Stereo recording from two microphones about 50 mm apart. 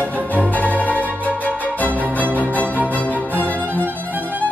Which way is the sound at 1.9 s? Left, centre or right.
Right.